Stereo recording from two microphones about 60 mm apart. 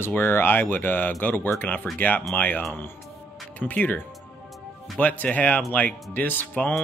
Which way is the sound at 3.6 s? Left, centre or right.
Left.